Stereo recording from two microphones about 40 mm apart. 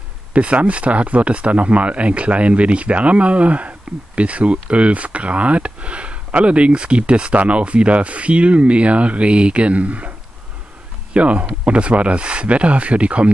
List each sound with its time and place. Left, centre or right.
0.3 s speech: right
11.1 s speech: right